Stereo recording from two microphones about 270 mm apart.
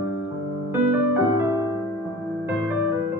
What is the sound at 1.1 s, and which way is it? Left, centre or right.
Music, centre.